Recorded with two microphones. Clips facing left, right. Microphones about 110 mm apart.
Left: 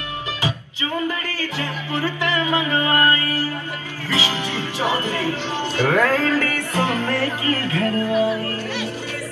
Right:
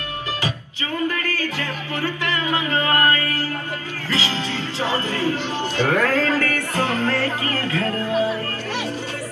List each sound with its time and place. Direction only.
1.0 s music: 15° left (ahead or behind)
4.1 s speech: 15° left (ahead or behind)
7.1 s music: 15° left (ahead or behind)